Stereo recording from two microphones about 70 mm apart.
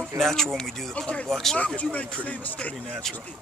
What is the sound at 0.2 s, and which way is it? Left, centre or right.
Speech, centre.